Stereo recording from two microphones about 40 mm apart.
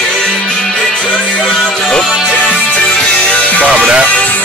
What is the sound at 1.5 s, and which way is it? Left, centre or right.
Music, centre.